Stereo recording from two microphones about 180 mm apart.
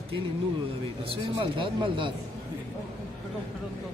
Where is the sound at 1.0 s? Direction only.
30° right (ahead or behind).